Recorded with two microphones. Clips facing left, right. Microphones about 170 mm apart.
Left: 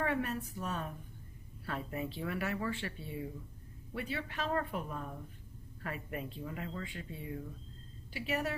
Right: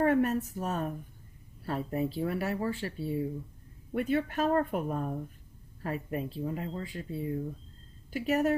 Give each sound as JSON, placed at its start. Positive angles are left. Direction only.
{"t": 0.0, "sound": "speech", "side_deg": -45}
{"t": 3.9, "sound": "speech", "side_deg": -50}
{"t": 5.8, "sound": "speech", "side_deg": -35}